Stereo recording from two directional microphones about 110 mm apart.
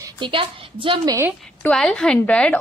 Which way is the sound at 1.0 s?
35° right (ahead or behind).